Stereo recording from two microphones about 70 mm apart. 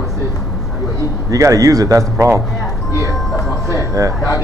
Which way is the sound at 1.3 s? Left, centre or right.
Right.